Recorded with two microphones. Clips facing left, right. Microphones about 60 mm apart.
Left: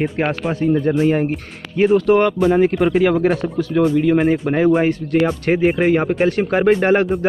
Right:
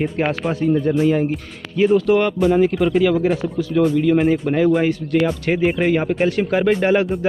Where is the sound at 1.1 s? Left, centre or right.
Left.